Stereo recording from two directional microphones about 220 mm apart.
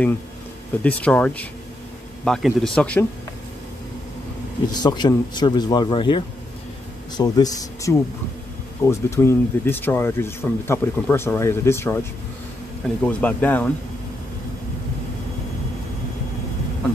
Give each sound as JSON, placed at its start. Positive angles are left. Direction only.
{"t": 0.8, "sound": "speech", "side_deg": 5}
{"t": 4.6, "sound": "speech", "side_deg": 20}